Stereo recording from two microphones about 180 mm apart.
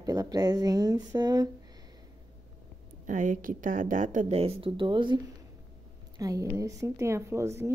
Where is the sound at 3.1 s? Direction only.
45° right (ahead or behind).